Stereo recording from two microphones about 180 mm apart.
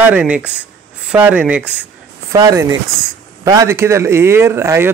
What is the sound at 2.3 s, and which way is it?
Speech, 20° right (ahead or behind).